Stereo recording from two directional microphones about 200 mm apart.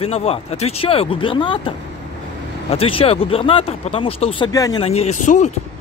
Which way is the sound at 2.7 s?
30° left (ahead or behind).